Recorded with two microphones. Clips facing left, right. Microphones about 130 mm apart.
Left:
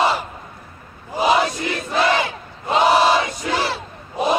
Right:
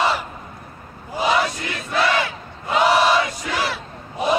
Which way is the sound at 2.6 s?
25° left (ahead or behind).